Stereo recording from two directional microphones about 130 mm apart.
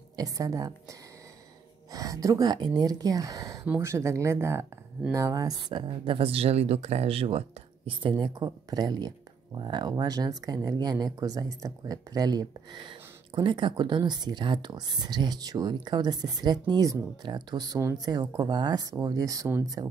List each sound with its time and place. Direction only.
0.1 s speech: 25° right (ahead or behind)
1.9 s speech: 30° right (ahead or behind)